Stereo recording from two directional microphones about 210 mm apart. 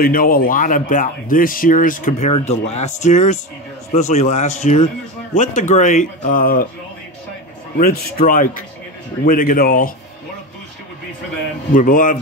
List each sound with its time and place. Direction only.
0.0 s speech: 45° left (ahead or behind)
7.7 s a man's voice: 45° left (ahead or behind)
11.7 s speech: 40° left (ahead or behind)